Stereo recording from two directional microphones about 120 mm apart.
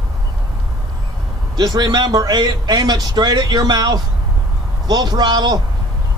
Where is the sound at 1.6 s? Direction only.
35° right (ahead or behind).